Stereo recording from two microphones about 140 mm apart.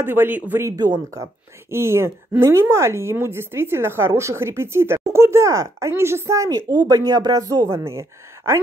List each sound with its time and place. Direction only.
0.0 s speech: 15° right (ahead or behind)
0.7 s speech: 25° right (ahead or behind)